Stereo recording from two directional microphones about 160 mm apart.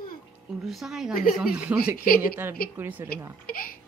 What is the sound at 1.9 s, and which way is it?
Speech, 65° left (ahead or behind).